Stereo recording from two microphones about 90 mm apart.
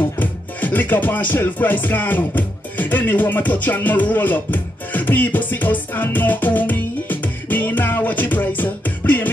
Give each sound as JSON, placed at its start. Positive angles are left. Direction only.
{"t": 0.2, "sound": "music", "side_deg": 20}